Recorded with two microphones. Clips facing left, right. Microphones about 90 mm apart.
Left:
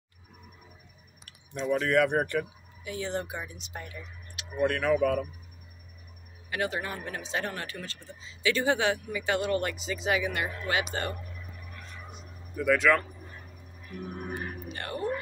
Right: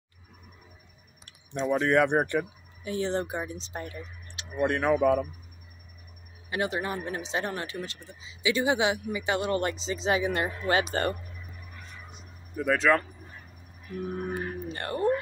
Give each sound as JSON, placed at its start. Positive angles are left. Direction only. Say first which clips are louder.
{"t": 1.5, "sound": "speech", "louder": "right 2 dB", "side_deg": -30}
{"t": 3.8, "sound": "a sound", "louder": "right 4 dB", "side_deg": -35}
{"t": 4.6, "sound": "speech", "louder": "right 1 dB", "side_deg": -20}
{"t": 6.5, "sound": "speech", "louder": "right 2 dB", "side_deg": -25}
{"t": 12.1, "sound": "a sound", "louder": "left 1 dB", "side_deg": -30}
{"t": 14.7, "sound": "speech", "louder": "right 6 dB", "side_deg": -35}